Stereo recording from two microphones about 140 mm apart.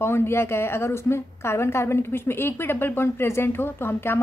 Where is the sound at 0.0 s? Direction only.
15° left (ahead or behind).